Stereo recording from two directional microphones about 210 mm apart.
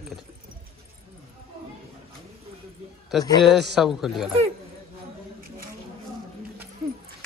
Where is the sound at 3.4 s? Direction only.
Centre (ahead or behind).